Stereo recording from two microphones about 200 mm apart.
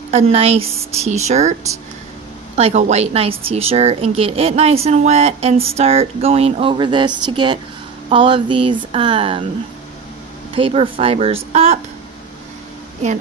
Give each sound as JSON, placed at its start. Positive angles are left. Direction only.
{"t": 0.1, "sound": "speech", "side_deg": -30}
{"t": 10.5, "sound": "speech", "side_deg": -30}